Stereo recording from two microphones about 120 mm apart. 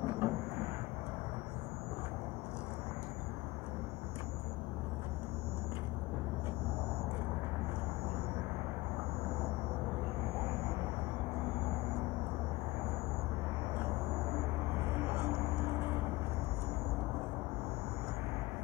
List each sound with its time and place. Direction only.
0.0 s vehicle: 20° right (ahead or behind)
14.9 s vehicle: 20° right (ahead or behind)